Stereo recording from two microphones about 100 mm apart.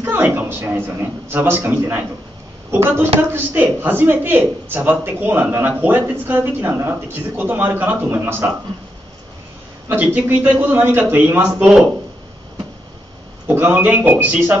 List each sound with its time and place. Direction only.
0.0 s a man's voice: 20° right (ahead or behind)
9.8 s a man's voice: 15° right (ahead or behind)
13.5 s a man's voice: 15° right (ahead or behind)